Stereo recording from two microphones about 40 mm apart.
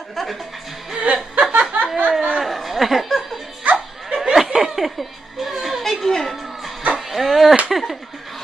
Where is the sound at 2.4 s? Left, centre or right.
Centre.